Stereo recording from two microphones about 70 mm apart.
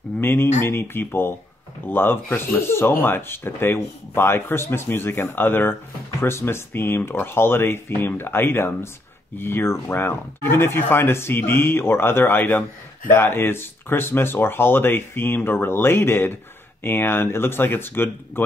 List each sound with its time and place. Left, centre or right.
0.2 s speech: left